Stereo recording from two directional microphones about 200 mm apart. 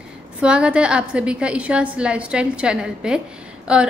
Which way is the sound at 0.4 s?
5° right (ahead or behind).